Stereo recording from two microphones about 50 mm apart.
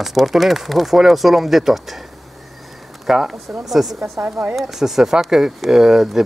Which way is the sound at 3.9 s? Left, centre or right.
Right.